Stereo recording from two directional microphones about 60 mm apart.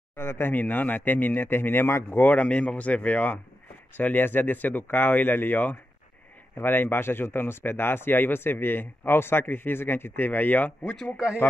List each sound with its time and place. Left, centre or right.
0.1 s speech: left